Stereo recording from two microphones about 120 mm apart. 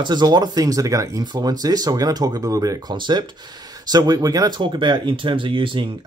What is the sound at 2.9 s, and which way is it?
Speech, 40° right (ahead or behind).